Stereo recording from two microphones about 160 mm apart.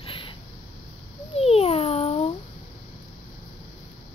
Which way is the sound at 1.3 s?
40° left (ahead or behind).